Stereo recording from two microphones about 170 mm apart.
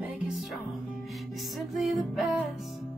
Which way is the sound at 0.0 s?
5° right (ahead or behind).